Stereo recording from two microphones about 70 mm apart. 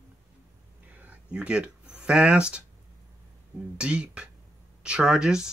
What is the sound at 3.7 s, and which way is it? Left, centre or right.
Speech, centre.